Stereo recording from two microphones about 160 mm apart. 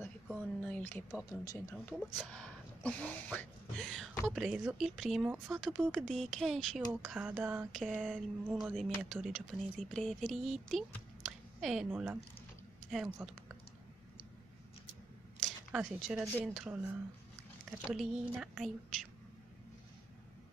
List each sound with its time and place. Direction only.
0.7 s speech: 10° left (ahead or behind)
1.3 s speech: 20° left (ahead or behind)
2.2 s speech: 5° left (ahead or behind)
15.4 s a sound: 5° right (ahead or behind)
16.3 s speech: centre (ahead or behind)